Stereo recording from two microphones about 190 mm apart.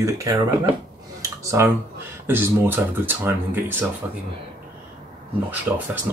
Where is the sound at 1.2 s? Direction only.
15° right (ahead or behind).